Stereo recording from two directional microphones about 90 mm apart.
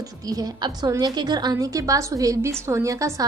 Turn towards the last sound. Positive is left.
turn(degrees=-40)  # may be behind; listen again after turning